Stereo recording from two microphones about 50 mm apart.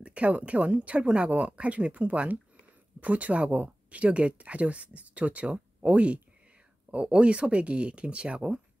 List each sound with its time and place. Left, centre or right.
0.0 s speech: right